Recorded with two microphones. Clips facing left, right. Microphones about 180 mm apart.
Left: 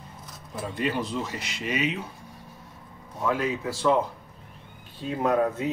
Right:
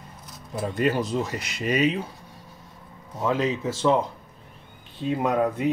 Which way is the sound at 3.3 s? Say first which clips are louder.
Right 2 dB; 20° right (ahead or behind).